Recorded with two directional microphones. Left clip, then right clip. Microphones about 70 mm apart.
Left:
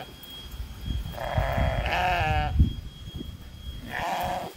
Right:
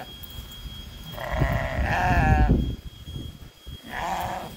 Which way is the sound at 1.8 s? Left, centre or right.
Right.